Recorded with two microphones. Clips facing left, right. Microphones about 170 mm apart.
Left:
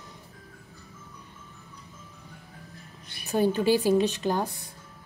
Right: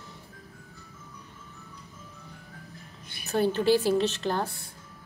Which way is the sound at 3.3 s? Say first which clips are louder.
Left 1 dB; 10° left (ahead or behind).